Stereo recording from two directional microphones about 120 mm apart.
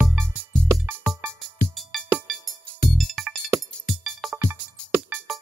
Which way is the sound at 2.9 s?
Centre (ahead or behind).